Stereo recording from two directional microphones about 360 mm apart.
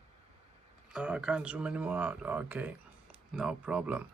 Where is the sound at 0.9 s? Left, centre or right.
Centre.